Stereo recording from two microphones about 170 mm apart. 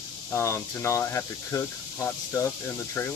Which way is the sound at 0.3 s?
15° left (ahead or behind).